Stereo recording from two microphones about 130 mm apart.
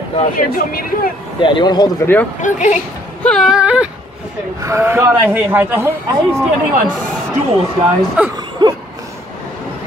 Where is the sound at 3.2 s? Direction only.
5° left (ahead or behind).